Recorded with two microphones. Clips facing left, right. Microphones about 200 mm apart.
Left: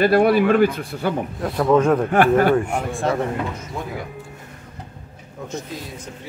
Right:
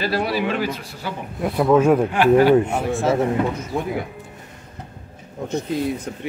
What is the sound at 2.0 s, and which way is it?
Speech, 50° left (ahead or behind).